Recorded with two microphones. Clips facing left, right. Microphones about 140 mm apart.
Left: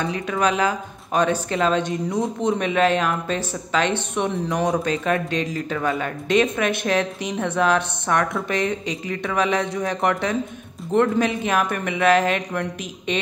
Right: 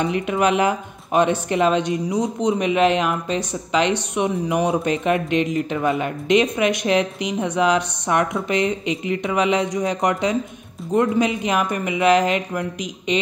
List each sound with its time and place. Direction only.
0.0 s speech: 20° right (ahead or behind)
1.5 s speech: 10° right (ahead or behind)